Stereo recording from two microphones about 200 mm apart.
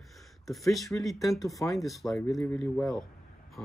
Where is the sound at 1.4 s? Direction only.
15° left (ahead or behind).